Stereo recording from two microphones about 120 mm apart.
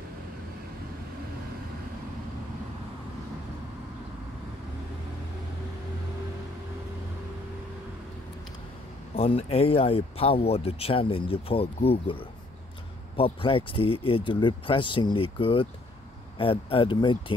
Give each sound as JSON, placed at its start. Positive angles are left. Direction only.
{"t": 9.1, "sound": "speech", "side_deg": 55}